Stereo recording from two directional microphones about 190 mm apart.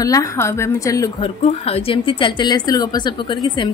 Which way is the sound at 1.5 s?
30° left (ahead or behind).